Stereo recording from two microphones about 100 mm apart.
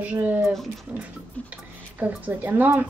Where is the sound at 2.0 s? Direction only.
15° right (ahead or behind).